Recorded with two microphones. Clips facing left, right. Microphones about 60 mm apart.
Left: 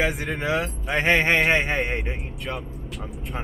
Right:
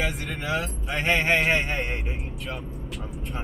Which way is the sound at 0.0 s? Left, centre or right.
Centre.